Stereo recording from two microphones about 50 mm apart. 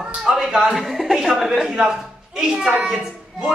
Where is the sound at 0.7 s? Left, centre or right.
Centre.